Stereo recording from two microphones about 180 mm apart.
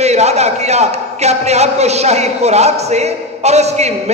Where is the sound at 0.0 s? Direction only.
35° right (ahead or behind).